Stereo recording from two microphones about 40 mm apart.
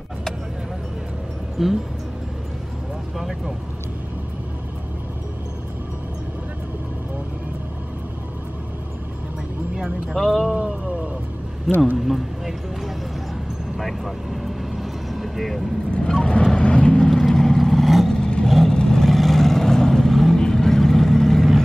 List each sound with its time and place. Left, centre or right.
1.6 s speech: centre
3.2 s speech: centre
10.1 s speech: centre
10.5 s vehicle: right
12.1 s music: centre
13.7 s vehicle: centre
16.0 s vehicle: centre
17.1 s vehicle: centre
18.1 s vehicle: centre
20.3 s vehicle: centre